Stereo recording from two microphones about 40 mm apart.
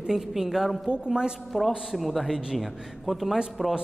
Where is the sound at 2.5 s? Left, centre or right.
Centre.